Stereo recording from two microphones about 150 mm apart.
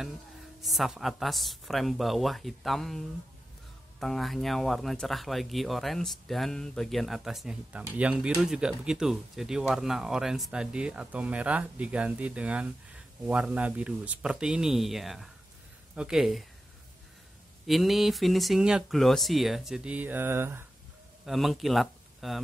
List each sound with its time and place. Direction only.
0.6 s speech: centre (ahead or behind)
17.6 s speech: centre (ahead or behind); by 20.6 s 15° right (ahead or behind)
21.3 s speech: centre (ahead or behind)